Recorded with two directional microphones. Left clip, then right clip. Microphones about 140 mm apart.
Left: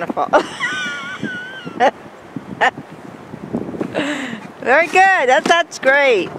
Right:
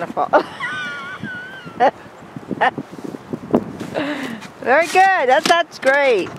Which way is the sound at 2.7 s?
20° left (ahead or behind).